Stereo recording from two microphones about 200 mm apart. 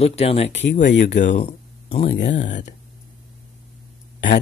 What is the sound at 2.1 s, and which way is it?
Speech, 60° left (ahead or behind).